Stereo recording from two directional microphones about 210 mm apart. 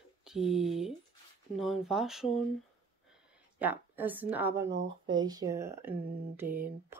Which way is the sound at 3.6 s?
10° right (ahead or behind).